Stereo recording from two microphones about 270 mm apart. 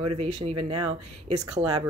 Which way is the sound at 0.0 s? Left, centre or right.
Centre.